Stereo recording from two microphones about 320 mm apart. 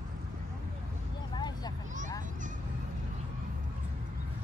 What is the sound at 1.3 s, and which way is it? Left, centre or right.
Vehicle, centre.